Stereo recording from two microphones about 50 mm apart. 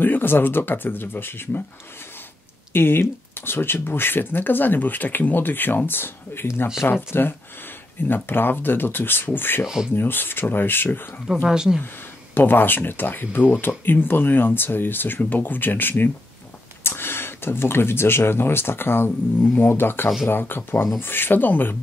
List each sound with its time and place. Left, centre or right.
0.0 s speech: left
2.7 s speech: left
11.4 s speech: centre
12.4 s speech: left